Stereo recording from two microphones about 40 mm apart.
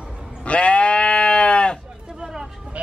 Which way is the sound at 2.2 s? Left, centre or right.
Centre.